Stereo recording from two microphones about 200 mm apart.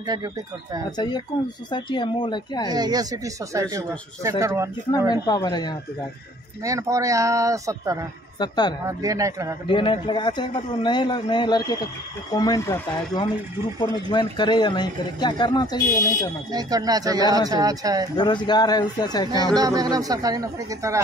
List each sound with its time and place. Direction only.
0.0 s speech: 20° right (ahead or behind)
0.9 s a man's voice: 20° left (ahead or behind)
2.7 s speech: 20° right (ahead or behind)
5.1 s a man's voice: 20° left (ahead or behind)
6.6 s speech: 15° right (ahead or behind)
8.4 s a man's voice: 20° left (ahead or behind)
8.8 s speech: 15° right (ahead or behind)
9.7 s a man's voice: 25° left (ahead or behind)
16.5 s speech: 20° right (ahead or behind)
18.1 s a man's voice: 20° left (ahead or behind)
19.5 s speech: 20° right (ahead or behind)